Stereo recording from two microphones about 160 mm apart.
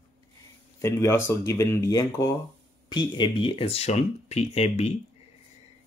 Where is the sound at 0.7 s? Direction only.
15° left (ahead or behind); by 4.9 s 40° left (ahead or behind).